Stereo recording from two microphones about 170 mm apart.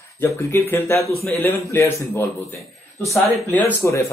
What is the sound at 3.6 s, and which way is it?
Speech, 15° left (ahead or behind).